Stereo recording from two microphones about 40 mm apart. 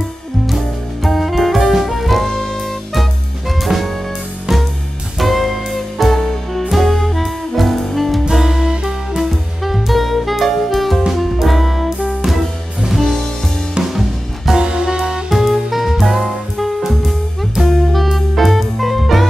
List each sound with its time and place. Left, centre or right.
1.0 s saxophone: centre
4.5 s music: centre
5.2 s music: centre
8.3 s music: centre
14.6 s music: centre
15.2 s music: centre